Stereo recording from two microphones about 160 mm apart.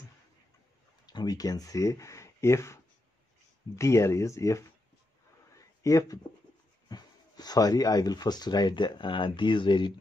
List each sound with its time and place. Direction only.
1.0 s speech: 25° left (ahead or behind)
5.6 s a sound: 20° left (ahead or behind)
6.9 s speech: 25° left (ahead or behind)